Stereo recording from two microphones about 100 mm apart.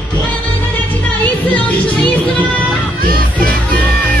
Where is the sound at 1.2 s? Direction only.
15° left (ahead or behind).